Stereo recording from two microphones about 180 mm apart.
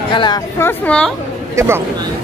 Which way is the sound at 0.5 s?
10° left (ahead or behind).